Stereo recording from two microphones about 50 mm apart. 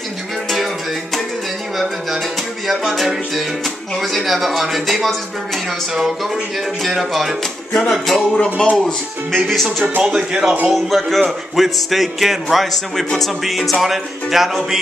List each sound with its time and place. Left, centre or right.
2.6 s speech: centre
6.8 s speech: centre
8.5 s speech: centre
9.4 s speech: centre
10.0 s speech: centre
10.7 s speech: centre